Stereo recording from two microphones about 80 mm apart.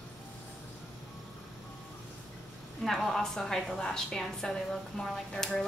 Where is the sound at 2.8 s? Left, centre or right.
Centre.